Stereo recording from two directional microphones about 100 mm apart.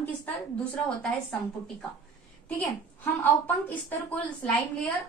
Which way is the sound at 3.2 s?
20° left (ahead or behind).